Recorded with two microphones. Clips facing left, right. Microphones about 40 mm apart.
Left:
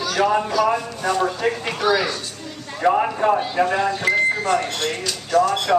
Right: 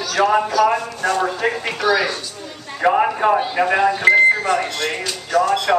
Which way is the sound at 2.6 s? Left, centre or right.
Centre.